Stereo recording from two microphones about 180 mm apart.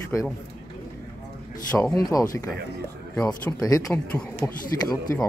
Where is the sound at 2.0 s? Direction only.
20° left (ahead or behind).